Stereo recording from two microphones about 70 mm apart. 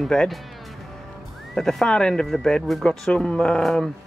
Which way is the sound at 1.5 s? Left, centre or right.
Centre.